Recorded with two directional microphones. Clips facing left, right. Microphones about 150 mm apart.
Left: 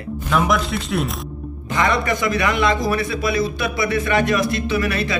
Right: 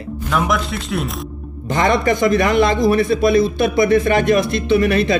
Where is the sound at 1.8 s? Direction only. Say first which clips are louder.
Right 4 dB; 35° right (ahead or behind).